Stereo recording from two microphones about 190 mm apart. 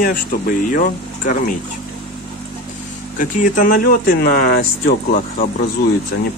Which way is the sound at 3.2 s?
45° left (ahead or behind).